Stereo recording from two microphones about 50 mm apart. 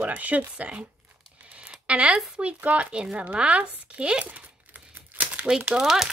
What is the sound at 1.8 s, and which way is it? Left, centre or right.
Speech, right.